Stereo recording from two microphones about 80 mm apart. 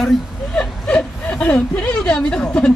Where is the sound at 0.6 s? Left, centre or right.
Centre.